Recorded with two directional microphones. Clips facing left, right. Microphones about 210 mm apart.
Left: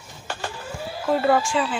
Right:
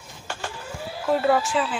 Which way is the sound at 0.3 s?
35° left (ahead or behind).